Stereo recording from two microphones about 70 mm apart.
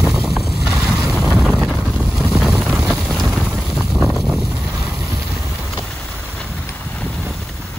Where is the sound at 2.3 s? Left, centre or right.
Centre.